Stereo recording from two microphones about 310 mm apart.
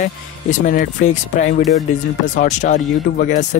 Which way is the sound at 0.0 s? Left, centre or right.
Left.